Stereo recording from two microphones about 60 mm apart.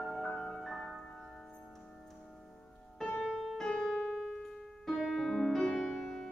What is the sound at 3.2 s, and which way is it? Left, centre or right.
Piano, centre.